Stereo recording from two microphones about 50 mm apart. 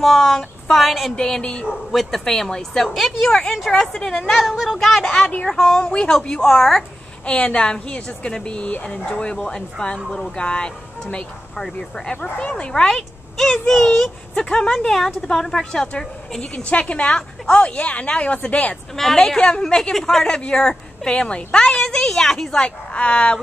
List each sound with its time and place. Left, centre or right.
0.0 s speech: centre
1.1 s a woman's voice: centre
1.9 s a woman's voice: centre
2.9 s speech: centre
3.3 s a woman's voice: centre
7.2 s a woman's voice: left
16.6 s a woman's voice: left
18.9 s a woman's voice: centre
22.9 s a woman's voice: left